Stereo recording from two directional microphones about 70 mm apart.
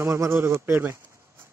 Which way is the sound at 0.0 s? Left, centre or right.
Right.